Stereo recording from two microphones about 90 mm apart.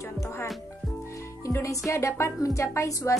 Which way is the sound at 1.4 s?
35° left (ahead or behind).